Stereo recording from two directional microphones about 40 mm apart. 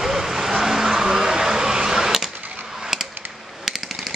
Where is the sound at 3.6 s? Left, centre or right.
Centre.